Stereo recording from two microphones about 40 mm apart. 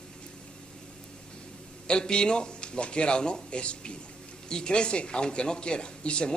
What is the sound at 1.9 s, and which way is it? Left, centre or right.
A man's voice, left.